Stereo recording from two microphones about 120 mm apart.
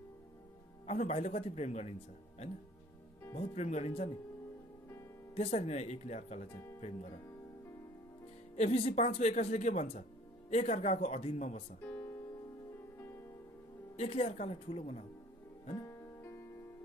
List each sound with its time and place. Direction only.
0.8 s speech: 70° left (ahead or behind)
5.3 s speech: 65° left (ahead or behind)
6.5 s speech: 20° left (ahead or behind)
6.8 s speech: 60° left (ahead or behind)
8.5 s speech: 70° left (ahead or behind); by 10.0 s 90° left
10.5 s speech: 70° left (ahead or behind)
11.8 s music: 20° left (ahead or behind)
13.9 s speech: 70° left (ahead or behind)
15.8 s music: 20° left (ahead or behind)